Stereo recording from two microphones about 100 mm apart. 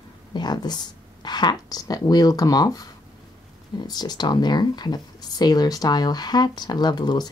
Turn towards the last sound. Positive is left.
turn(degrees=45)  # may be behind; listen again after turning